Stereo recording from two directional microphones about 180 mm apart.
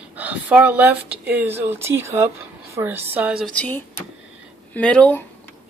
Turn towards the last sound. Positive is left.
turn(degrees=5)  # may be behind; listen again after turning